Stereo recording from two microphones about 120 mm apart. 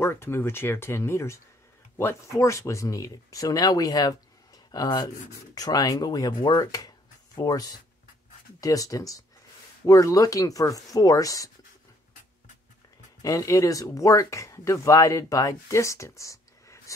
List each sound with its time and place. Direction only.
0.0 s speech: 20° left (ahead or behind)
13.2 s speech: 30° left (ahead or behind)